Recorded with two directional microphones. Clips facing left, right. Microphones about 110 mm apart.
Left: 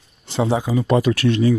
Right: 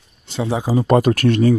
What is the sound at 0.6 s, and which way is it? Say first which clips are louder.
Speech: right 2 dB; 35° right (ahead or behind).